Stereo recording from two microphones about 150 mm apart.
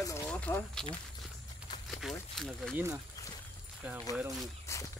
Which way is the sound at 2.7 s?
15° right (ahead or behind).